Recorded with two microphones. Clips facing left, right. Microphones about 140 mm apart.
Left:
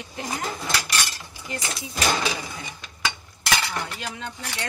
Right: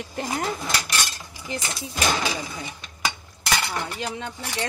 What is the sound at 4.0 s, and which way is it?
Speech, 25° right (ahead or behind).